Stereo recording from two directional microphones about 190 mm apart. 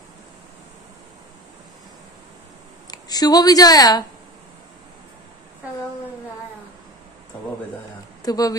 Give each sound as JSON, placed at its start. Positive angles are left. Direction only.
{"t": 2.9, "sound": "speech", "side_deg": 20}
{"t": 8.2, "sound": "speech", "side_deg": 20}